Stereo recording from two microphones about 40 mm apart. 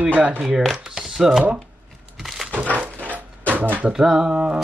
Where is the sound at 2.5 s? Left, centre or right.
Right.